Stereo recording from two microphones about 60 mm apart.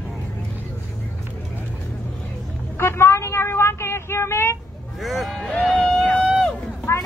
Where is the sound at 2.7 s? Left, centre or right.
Left.